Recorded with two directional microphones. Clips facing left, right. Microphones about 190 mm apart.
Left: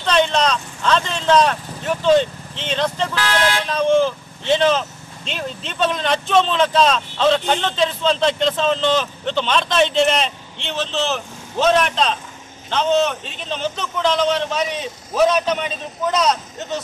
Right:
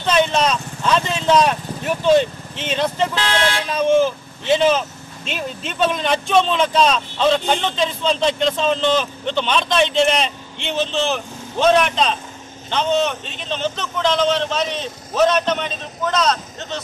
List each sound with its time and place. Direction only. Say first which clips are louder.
0.0 s speech: even; 5° right (ahead or behind)
3.2 s speech: even; 25° right (ahead or behind)
3.7 s a man's voice: right 1 dB; 5° right (ahead or behind); by 16.8 s 15° left (ahead or behind)